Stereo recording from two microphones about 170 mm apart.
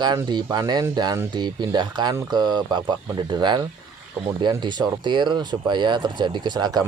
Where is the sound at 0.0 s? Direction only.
25° right (ahead or behind).